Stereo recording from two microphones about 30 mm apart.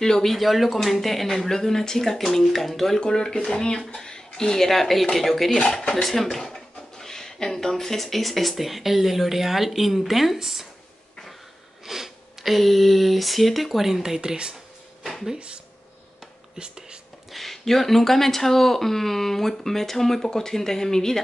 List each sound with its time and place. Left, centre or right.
0.0 s speech: centre
0.3 s speech: centre
3.1 s speech: left
4.6 s speech: centre
11.8 s sniff: centre
12.5 s speech: centre
15.3 s speech: right
16.5 s whispering: right
17.3 s speech: centre